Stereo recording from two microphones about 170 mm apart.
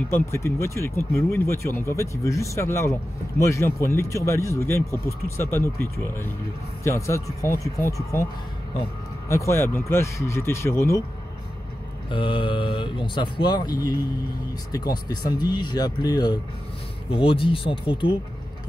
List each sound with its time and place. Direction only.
0.1 s speech: 15° left (ahead or behind)
9.3 s speech: 15° left (ahead or behind)
12.1 s speech: 30° left (ahead or behind)